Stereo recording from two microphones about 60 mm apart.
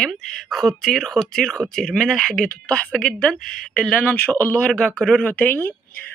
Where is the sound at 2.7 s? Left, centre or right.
Centre.